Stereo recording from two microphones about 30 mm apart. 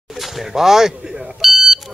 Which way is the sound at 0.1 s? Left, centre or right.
Centre.